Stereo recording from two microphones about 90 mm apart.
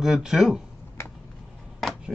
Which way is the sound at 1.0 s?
30° left (ahead or behind).